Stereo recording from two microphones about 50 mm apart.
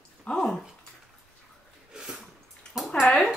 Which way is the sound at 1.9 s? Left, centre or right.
Centre.